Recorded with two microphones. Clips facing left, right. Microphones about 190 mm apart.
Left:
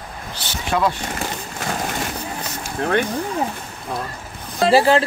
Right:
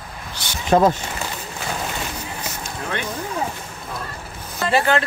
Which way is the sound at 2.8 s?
50° left (ahead or behind).